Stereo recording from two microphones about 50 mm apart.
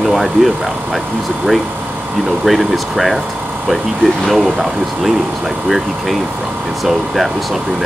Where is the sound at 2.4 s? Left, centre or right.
Centre.